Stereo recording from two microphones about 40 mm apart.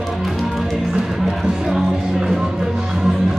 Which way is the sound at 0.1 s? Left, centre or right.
Centre.